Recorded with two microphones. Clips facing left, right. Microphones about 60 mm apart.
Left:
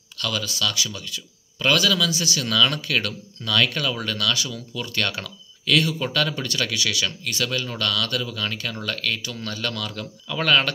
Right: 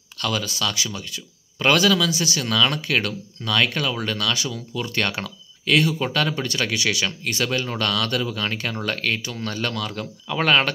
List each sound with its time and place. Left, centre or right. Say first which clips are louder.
0.2 s speech: right 2 dB; right